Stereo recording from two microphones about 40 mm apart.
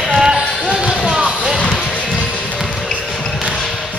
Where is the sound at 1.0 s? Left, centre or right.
Centre.